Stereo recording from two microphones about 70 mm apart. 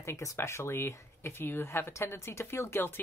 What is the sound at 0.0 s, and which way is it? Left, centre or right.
Speech, left.